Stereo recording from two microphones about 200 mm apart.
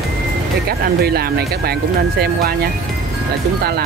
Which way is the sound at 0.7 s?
50° right (ahead or behind).